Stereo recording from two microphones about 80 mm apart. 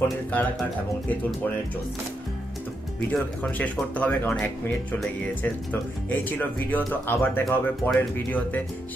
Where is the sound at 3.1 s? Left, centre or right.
Centre.